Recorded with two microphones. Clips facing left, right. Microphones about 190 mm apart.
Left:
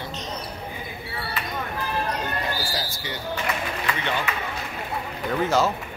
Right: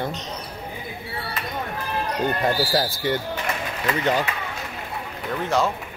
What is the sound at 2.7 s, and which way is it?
Speech, 55° right (ahead or behind).